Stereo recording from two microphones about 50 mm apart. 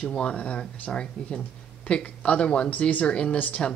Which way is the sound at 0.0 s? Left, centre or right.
Left.